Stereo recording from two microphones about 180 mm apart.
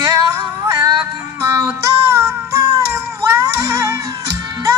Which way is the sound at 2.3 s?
15° right (ahead or behind).